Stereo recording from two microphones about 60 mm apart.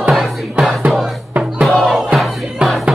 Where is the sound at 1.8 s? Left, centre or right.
Centre.